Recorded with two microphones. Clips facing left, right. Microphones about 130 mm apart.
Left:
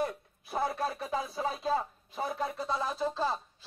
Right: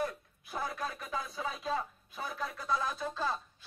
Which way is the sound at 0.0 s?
30° left (ahead or behind).